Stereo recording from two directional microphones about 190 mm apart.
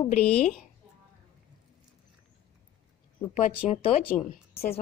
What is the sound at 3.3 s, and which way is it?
Speech, 40° left (ahead or behind).